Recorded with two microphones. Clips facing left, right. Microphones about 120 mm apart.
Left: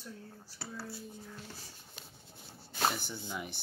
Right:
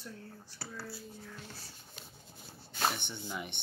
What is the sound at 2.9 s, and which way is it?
Speech, centre (ahead or behind).